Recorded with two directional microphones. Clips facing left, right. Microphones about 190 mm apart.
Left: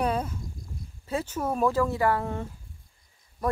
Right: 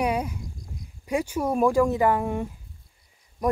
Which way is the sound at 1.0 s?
15° right (ahead or behind).